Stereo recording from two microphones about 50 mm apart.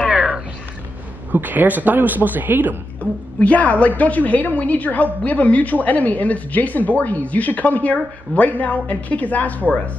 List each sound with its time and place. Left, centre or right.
1.3 s speech: right
3.0 s a woman's voice: left